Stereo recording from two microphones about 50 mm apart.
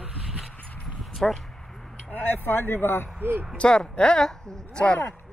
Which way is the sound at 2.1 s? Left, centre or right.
Left.